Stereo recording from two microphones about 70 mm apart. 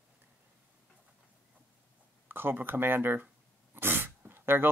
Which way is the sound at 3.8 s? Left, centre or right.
Right.